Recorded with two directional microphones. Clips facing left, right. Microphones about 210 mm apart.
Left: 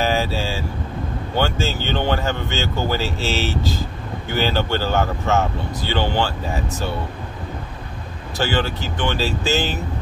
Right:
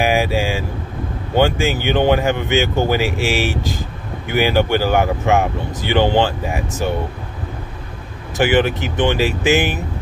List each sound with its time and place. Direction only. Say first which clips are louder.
0.0 s speech: right 4 dB; 15° right (ahead or behind)
8.4 s speech: right 6 dB; 15° right (ahead or behind)